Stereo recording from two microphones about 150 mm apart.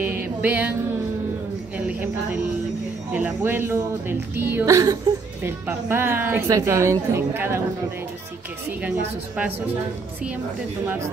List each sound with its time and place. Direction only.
0.0 s music: 10° right (ahead or behind)
1.9 s a sound: 10° right (ahead or behind)
3.1 s a woman's voice: 10° right (ahead or behind)